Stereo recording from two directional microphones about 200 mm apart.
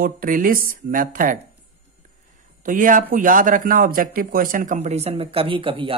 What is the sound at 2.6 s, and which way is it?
Speech, 40° right (ahead or behind).